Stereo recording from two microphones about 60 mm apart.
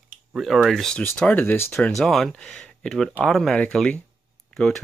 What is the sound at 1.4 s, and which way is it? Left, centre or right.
Speech, left.